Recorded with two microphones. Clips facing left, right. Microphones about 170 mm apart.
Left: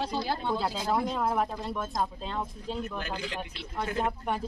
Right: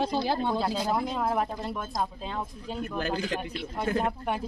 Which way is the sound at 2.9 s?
35° right (ahead or behind).